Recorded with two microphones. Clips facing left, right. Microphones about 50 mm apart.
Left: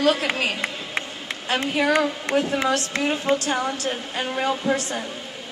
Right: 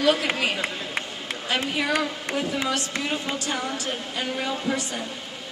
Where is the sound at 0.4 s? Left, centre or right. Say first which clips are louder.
Left 1 dB; left.